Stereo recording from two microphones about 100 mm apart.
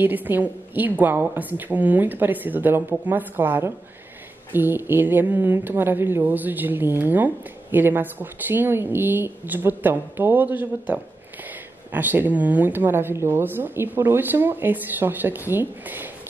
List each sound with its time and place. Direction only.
0.0 s speech: 20° right (ahead or behind)